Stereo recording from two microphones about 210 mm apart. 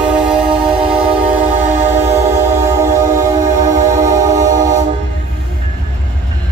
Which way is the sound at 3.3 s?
35° right (ahead or behind).